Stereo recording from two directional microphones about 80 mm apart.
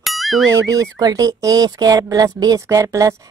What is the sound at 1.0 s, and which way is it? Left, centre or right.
Speech, right.